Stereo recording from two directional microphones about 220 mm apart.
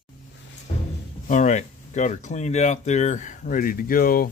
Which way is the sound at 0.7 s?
30° left (ahead or behind).